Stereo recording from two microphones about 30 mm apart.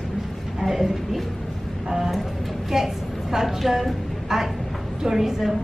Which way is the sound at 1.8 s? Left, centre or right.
Centre.